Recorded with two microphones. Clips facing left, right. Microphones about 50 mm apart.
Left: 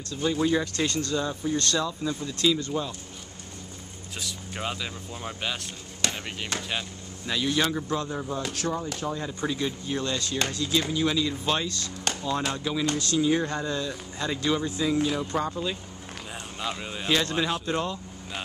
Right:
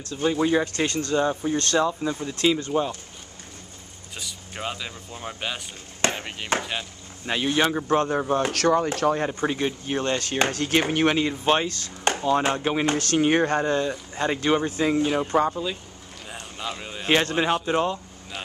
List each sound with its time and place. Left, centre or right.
0.1 s speech: right
4.2 s speech: centre
7.2 s speech: right
7.9 s speech: right
9.3 s speech: right
16.3 s a sound: centre
17.1 s speech: right